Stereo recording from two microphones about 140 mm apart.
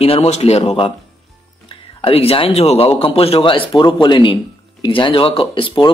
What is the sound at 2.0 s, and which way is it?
Speech, 45° left (ahead or behind).